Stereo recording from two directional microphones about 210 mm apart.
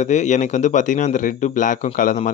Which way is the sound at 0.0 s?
35° left (ahead or behind).